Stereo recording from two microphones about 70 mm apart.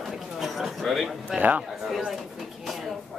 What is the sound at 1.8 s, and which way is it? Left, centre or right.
Speech, centre.